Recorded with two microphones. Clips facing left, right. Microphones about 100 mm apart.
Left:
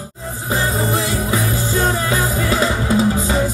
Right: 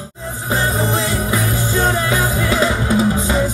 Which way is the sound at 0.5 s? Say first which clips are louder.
Right 1 dB; 25° right (ahead or behind).